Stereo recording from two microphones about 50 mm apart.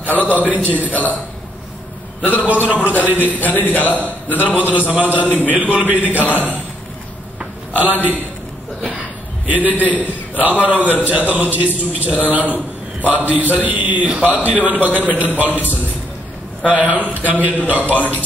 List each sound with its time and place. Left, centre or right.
0.0 s a man's voice: right
2.2 s a man's voice: right
3.3 s speech: left
3.8 s a man's voice: right
7.8 s a man's voice: right
9.5 s a man's voice: right